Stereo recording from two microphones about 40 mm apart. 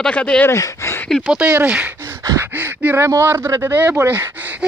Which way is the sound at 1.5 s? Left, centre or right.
Right.